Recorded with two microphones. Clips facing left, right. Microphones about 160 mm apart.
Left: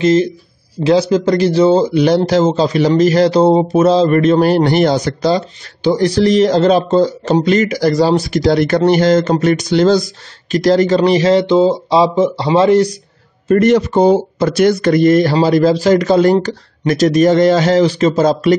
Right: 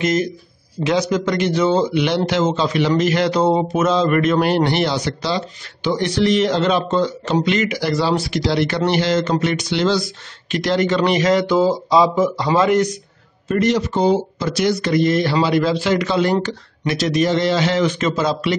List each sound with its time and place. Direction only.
0.0 s speech: 30° left (ahead or behind)
13.5 s speech: 55° left (ahead or behind)